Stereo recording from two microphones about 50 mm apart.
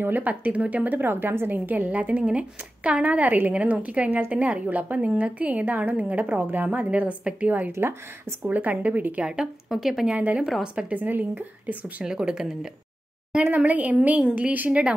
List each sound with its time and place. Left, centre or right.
0.0 s a woman's voice: right
1.0 s a woman's voice: right
1.9 s a woman's voice: right
7.7 s speech: right
8.5 s a woman's voice: right
9.7 s speech: centre
10.0 s a woman's voice: right
12.0 s a woman's voice: centre
13.6 s a woman's voice: right